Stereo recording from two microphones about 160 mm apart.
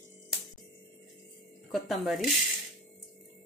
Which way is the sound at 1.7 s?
Centre (ahead or behind).